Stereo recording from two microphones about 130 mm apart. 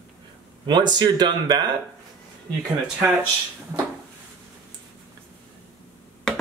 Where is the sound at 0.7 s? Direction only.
35° right (ahead or behind).